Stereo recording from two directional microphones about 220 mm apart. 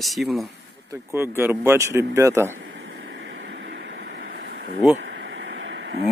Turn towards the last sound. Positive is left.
turn(degrees=-55)  # may be behind; listen again after turning